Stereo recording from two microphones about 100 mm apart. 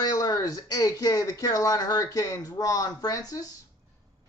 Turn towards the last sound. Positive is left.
turn(degrees=40)  # may be behind; listen again after turning